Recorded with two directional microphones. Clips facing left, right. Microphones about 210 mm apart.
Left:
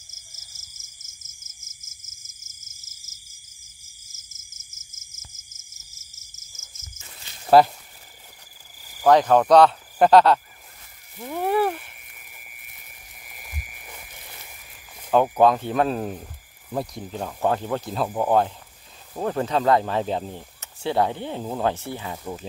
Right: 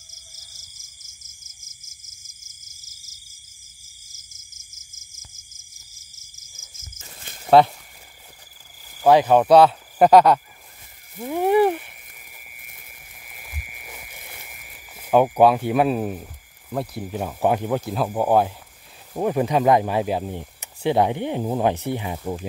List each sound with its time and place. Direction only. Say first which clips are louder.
7.4 s speech: right 1 dB; centre (ahead or behind)
9.0 s speech: right 1 dB; 10° right (ahead or behind)
12.3 s a sound: right 2 dB; centre (ahead or behind)
19.1 s speech: right 3 dB; 15° right (ahead or behind)